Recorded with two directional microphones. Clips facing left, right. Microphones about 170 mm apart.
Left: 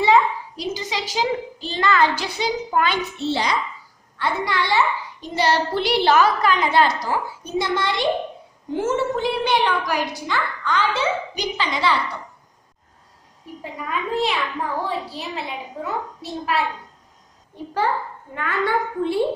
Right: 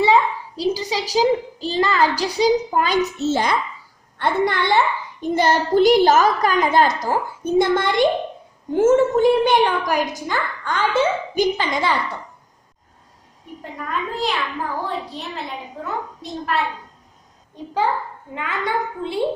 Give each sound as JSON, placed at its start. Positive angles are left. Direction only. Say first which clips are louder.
{"t": 0.6, "sound": "a woman's voice", "louder": "right 6 dB", "side_deg": -35}
{"t": 13.6, "sound": "a child's voice", "louder": "right 1 dB", "side_deg": 0}
{"t": 18.3, "sound": "a woman's voice", "louder": "left 2 dB", "side_deg": -15}